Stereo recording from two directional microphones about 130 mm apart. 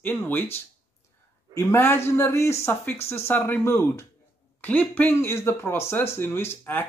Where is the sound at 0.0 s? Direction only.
15° left (ahead or behind).